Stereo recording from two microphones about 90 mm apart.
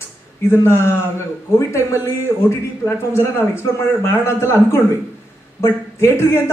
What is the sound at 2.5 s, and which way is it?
A man's voice, 30° left (ahead or behind).